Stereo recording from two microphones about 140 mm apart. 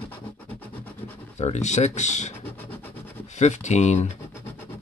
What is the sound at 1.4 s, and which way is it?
Speech, 55° left (ahead or behind).